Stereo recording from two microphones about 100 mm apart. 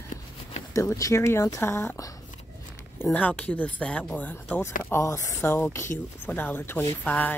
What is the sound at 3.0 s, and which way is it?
Speech, 15° left (ahead or behind).